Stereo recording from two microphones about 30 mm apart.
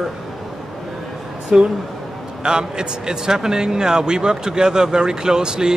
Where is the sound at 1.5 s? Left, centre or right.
Right.